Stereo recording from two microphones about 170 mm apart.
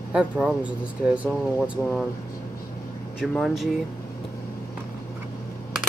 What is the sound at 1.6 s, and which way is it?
Speech, centre (ahead or behind).